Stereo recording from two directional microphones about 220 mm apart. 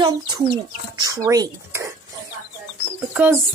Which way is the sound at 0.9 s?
15° right (ahead or behind).